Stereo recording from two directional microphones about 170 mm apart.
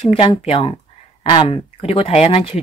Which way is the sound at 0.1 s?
30° left (ahead or behind).